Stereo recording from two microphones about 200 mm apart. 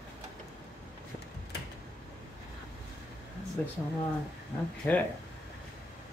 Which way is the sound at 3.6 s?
10° left (ahead or behind).